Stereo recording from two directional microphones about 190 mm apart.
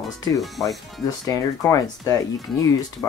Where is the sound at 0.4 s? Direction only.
Centre (ahead or behind).